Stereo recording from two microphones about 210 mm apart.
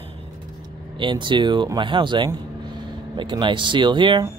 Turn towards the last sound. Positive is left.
turn(degrees=-20)  # may be behind; listen again after turning